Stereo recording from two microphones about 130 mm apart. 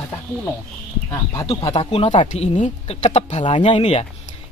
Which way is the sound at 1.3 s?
25° left (ahead or behind).